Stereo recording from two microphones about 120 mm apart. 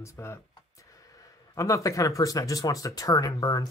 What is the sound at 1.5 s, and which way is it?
Speech, 25° left (ahead or behind).